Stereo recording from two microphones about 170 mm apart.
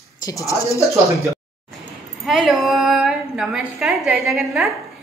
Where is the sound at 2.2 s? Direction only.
5° right (ahead or behind).